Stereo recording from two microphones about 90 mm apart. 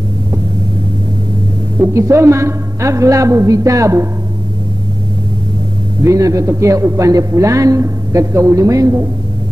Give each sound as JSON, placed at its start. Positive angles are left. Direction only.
{"t": 1.8, "sound": "a man's voice", "side_deg": -30}
{"t": 6.0, "sound": "a man's voice", "side_deg": -40}